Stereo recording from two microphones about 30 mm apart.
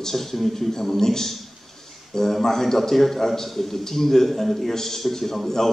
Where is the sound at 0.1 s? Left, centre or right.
Centre.